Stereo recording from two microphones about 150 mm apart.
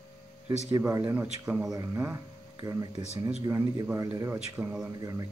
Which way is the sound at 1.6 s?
20° right (ahead or behind).